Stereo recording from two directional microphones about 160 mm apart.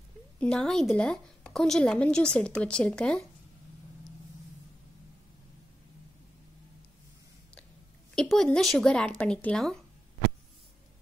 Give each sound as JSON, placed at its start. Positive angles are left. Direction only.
{"t": 0.4, "sound": "a woman's voice", "side_deg": 5}
{"t": 8.1, "sound": "a woman's voice", "side_deg": 5}